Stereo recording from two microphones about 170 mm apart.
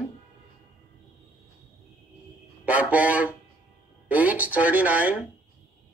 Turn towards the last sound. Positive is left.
turn(degrees=-10)  # may be behind; listen again after turning